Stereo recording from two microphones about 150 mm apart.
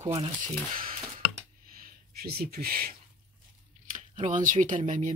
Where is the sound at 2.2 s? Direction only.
90° right.